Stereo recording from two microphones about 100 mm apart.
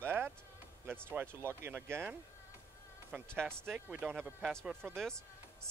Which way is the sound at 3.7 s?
15° right (ahead or behind).